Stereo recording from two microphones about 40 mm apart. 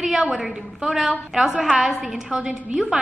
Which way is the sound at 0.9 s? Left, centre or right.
Centre.